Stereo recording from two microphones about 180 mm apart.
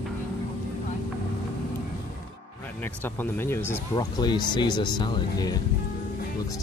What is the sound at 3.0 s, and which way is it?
Speech, 10° left (ahead or behind).